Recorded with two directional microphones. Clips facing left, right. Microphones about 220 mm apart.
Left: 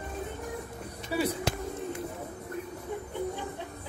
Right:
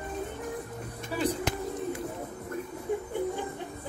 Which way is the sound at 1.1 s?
10° left (ahead or behind).